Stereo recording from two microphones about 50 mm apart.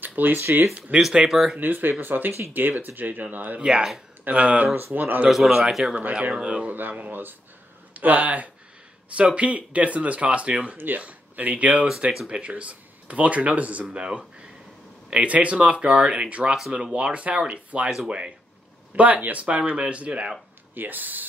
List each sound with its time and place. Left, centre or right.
0.0 s a sound: right
0.4 s speech: right
1.1 s speech: centre
1.6 s speech: right
3.6 s speech: centre
4.2 s speech: right
5.3 s a man's voice: centre
6.3 s speech: centre
6.7 s speech: right
20.7 s speech: right